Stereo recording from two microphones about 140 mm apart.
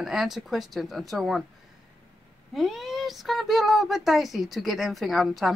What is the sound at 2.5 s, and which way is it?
Speech, centre (ahead or behind).